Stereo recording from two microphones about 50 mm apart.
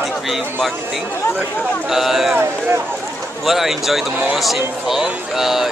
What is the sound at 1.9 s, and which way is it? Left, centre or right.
Speech, centre.